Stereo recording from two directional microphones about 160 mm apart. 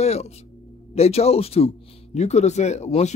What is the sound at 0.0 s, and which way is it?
Music, 45° left (ahead or behind).